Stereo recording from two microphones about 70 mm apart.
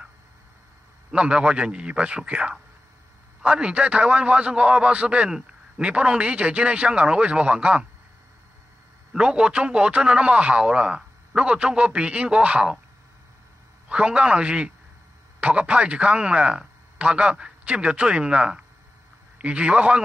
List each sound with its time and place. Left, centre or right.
1.1 s a man's voice: centre
9.1 s a man's voice: centre
13.8 s a man's voice: centre